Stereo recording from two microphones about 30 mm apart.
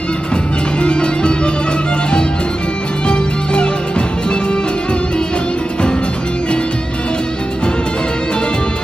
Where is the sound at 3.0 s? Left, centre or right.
Left.